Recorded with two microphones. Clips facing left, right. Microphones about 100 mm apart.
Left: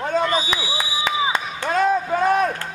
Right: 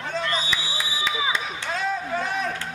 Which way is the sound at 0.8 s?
55° left (ahead or behind).